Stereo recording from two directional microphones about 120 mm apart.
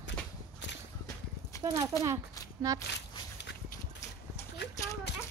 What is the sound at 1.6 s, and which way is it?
Speech, 30° right (ahead or behind).